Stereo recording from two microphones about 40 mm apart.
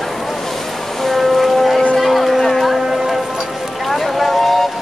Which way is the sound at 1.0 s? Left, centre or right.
Centre.